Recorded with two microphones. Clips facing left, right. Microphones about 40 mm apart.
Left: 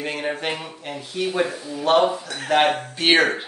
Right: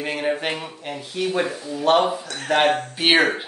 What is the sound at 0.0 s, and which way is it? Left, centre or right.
Speech, centre.